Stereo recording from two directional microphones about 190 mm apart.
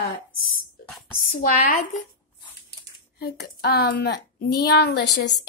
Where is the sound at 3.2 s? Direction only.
60° left (ahead or behind).